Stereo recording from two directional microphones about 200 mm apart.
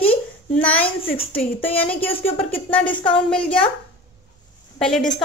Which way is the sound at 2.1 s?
30° left (ahead or behind).